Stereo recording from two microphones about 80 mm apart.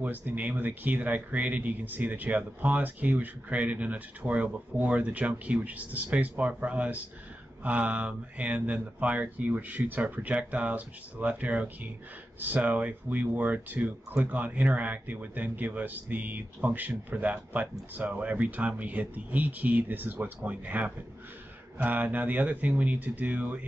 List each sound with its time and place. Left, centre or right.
0.0 s speech: right